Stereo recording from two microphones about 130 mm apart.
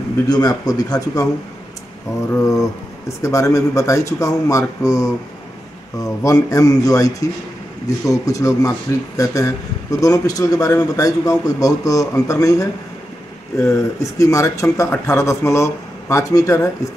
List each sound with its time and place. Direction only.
0.3 s speech: 30° left (ahead or behind)
2.4 s speech: 25° left (ahead or behind)
6.2 s speech: 25° left (ahead or behind)